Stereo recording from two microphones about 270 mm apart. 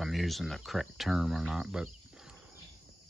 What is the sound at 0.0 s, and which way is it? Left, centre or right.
Speech, centre.